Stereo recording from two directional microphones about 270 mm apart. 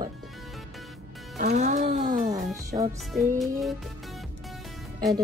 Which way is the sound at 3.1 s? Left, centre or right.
Centre.